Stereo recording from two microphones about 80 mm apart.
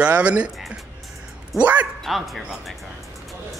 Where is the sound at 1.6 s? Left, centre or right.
Right.